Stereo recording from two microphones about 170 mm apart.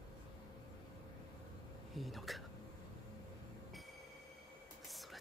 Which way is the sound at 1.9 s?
Centre (ahead or behind).